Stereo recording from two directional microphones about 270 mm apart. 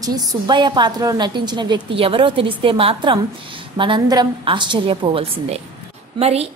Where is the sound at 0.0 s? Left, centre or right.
Centre.